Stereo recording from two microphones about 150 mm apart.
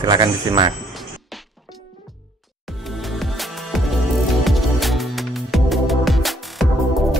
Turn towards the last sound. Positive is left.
turn(degrees=0)  # may be behind; listen again after turning